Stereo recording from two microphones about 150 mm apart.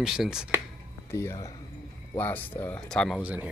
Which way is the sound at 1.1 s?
20° left (ahead or behind).